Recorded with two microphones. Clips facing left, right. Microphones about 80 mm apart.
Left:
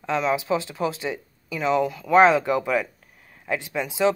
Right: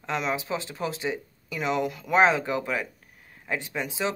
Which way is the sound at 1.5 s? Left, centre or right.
Centre.